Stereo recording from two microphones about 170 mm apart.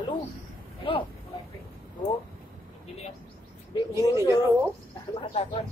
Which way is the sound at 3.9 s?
15° right (ahead or behind).